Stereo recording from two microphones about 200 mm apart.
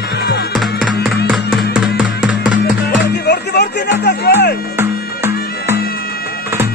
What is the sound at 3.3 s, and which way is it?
Music, 55° left (ahead or behind).